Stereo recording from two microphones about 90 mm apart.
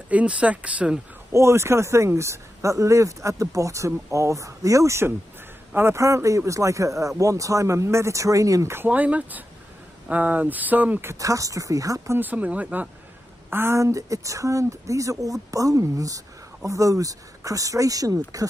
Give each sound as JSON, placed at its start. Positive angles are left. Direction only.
{"t": 0.1, "sound": "speech", "side_deg": -15}
{"t": 1.3, "sound": "speech", "side_deg": -30}
{"t": 8.7, "sound": "speech", "side_deg": -20}
{"t": 11.1, "sound": "speech", "side_deg": -40}
{"t": 12.2, "sound": "speech", "side_deg": -15}
{"t": 13.5, "sound": "speech", "side_deg": -25}